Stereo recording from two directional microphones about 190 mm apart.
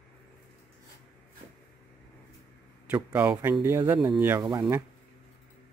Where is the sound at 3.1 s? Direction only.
5° right (ahead or behind).